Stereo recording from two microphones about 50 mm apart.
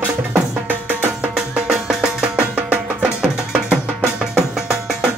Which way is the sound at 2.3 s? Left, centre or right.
Right.